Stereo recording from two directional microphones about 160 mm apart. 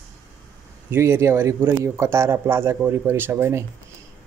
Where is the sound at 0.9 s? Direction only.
15° right (ahead or behind).